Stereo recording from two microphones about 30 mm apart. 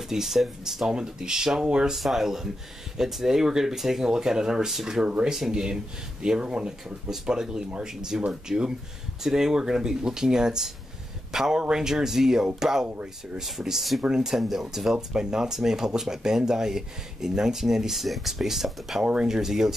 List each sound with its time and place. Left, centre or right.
0.1 s speech: centre
0.8 s speech: right
2.0 s speech: centre
4.0 s speech: right